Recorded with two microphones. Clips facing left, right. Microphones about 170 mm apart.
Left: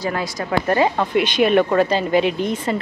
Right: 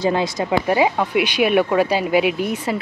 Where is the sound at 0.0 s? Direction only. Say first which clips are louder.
Right 5 dB; 25° right (ahead or behind).